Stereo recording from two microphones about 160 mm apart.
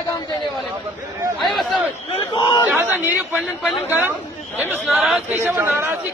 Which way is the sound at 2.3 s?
25° left (ahead or behind).